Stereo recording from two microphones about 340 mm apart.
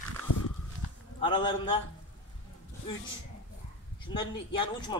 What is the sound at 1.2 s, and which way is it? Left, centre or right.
Speech, centre.